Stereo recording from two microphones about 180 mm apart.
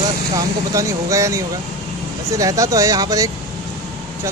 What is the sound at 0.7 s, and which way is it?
Speech, 15° right (ahead or behind).